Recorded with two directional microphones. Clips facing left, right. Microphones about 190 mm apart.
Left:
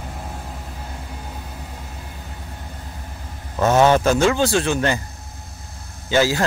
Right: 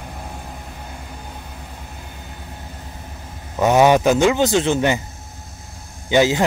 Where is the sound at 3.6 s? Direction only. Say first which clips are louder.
Right 2 dB; 15° right (ahead or behind).